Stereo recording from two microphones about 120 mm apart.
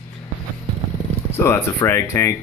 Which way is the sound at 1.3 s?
20° left (ahead or behind).